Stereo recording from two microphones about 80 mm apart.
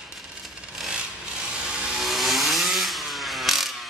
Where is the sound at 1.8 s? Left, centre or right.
Centre.